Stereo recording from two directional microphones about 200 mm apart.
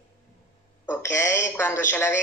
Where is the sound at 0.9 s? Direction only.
10° left (ahead or behind).